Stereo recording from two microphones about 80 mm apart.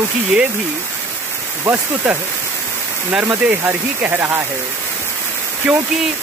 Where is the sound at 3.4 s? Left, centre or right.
Right.